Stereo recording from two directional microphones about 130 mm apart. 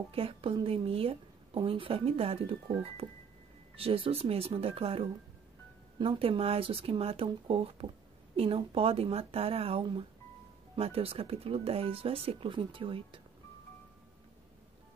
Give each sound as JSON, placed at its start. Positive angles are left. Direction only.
{"t": 0.1, "sound": "a woman's voice", "side_deg": -45}